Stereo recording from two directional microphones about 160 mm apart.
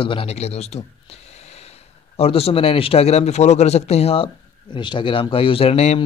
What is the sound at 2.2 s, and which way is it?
A man's voice, 40° left (ahead or behind).